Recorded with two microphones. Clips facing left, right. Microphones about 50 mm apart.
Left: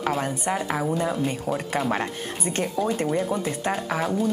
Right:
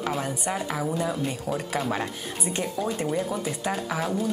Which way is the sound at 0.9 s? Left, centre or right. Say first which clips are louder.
Left 2 dB; centre.